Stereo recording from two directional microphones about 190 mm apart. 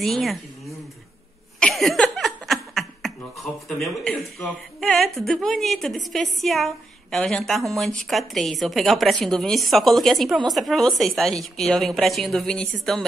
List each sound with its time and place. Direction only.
0.0 s a woman's voice: centre (ahead or behind)
1.6 s laughter: centre (ahead or behind)
3.6 s a woman's voice: centre (ahead or behind)